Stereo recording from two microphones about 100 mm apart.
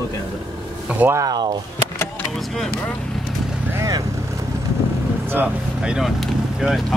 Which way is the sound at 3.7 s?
35° right (ahead or behind).